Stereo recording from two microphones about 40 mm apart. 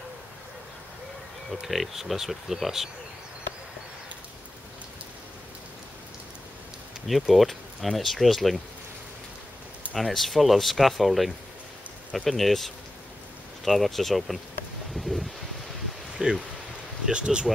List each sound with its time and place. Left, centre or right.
1.5 s speech: centre
7.1 s speech: centre
9.9 s speech: centre
15.0 s wind: centre
16.2 s speech: centre